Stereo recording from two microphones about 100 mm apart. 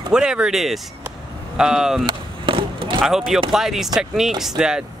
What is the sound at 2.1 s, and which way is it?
Chop, 55° right (ahead or behind).